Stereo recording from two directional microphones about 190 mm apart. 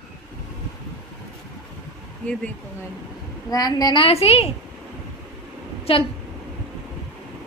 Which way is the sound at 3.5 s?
20° left (ahead or behind).